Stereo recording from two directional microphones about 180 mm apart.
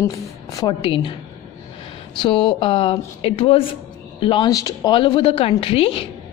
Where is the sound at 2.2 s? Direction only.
30° left (ahead or behind).